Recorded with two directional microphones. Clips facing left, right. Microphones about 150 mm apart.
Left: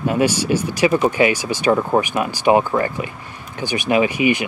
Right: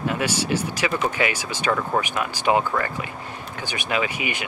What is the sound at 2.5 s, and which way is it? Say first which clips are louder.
Speech: left 5 dB; 25° left (ahead or behind).